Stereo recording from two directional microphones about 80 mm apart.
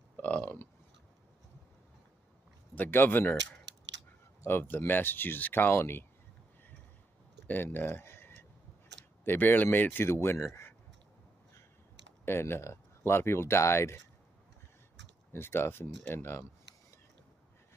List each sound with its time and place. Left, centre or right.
0.2 s a sound: left
2.7 s speech: left
4.5 s speech: left
7.4 s speech: left
12.3 s speech: left
15.3 s speech: left